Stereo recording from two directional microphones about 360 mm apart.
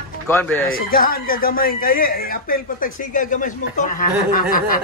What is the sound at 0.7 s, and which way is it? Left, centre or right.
Speech, left.